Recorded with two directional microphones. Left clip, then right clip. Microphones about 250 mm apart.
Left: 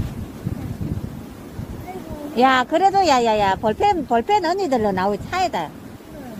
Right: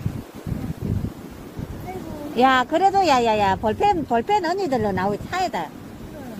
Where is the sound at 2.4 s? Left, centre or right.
Centre.